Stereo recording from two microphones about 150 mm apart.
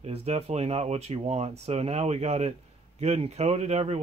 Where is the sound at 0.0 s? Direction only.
45° right (ahead or behind).